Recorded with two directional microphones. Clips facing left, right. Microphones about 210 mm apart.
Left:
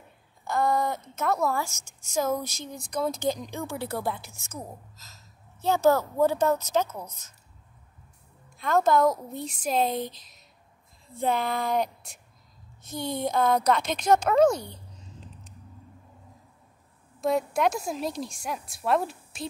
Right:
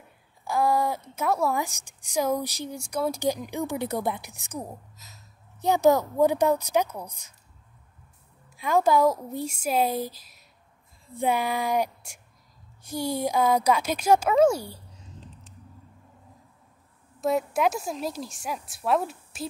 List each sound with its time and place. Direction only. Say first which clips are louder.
0.5 s a woman's voice: right 1 dB; 10° right (ahead or behind)
8.5 s a woman's voice: right 1 dB; 10° right (ahead or behind)
17.2 s a woman's voice: even; centre (ahead or behind)